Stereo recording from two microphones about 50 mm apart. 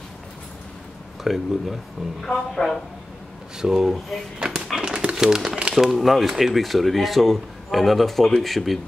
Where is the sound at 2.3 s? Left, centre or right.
Centre.